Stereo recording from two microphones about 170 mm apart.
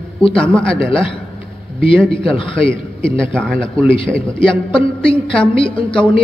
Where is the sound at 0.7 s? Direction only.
30° left (ahead or behind).